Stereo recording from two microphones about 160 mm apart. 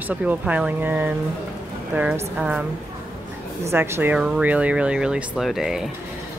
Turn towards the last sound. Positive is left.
turn(degrees=0)  # may be behind; listen again after turning